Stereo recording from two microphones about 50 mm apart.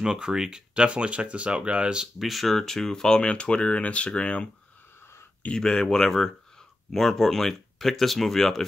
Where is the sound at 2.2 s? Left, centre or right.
Centre; by 4.4 s left.